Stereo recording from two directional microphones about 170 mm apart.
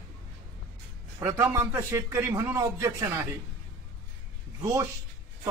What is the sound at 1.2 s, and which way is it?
A man's voice, 15° right (ahead or behind).